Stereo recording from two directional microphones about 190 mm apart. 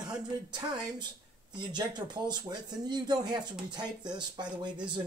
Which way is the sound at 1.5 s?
20° right (ahead or behind).